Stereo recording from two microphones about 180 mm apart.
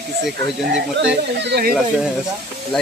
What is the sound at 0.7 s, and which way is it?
Speech, 75° right (ahead or behind).